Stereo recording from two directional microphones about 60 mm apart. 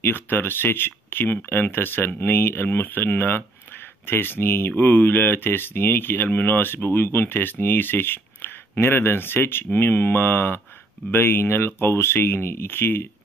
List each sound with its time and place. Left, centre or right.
0.0 s speech: left